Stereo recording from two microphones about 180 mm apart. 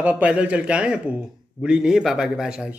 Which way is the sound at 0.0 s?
5° right (ahead or behind).